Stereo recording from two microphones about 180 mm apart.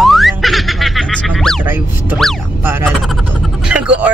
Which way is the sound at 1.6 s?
10° right (ahead or behind).